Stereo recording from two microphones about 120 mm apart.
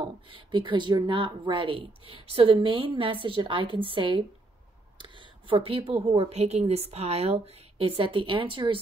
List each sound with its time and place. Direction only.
0.0 s a woman's voice: 45° right (ahead or behind); by 7.3 s 60° right (ahead or behind)
7.8 s speech: 50° right (ahead or behind)